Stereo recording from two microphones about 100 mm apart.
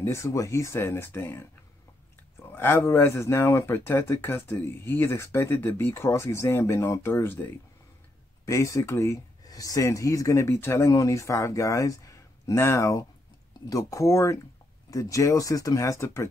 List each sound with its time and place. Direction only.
0.0 s speech: 30° left (ahead or behind)
2.5 s speech: 25° left (ahead or behind)
8.5 s speech: 30° left (ahead or behind)